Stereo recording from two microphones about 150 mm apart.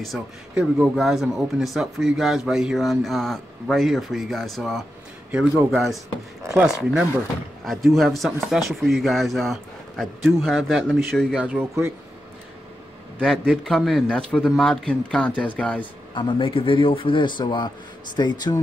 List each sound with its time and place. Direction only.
0.0 s a man's voice: 5° right (ahead or behind)
11.3 s a man's voice: 10° right (ahead or behind)
13.2 s speech: 5° left (ahead or behind)
15.8 s speech: 35° left (ahead or behind)